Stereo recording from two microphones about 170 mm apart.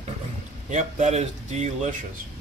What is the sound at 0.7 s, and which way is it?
Speech, 45° right (ahead or behind).